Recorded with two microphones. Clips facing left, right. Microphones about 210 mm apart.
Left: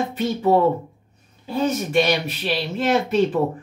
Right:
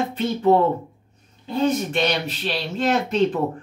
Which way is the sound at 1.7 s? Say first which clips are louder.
Left 3 dB; 10° left (ahead or behind).